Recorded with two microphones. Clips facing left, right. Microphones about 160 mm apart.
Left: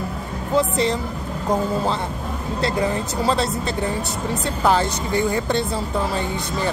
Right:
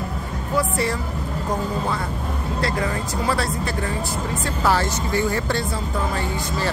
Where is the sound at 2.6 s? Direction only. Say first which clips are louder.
Left 3 dB; 25° left (ahead or behind).